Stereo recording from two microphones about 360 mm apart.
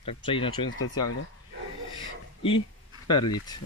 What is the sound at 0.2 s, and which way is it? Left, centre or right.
Speech, centre.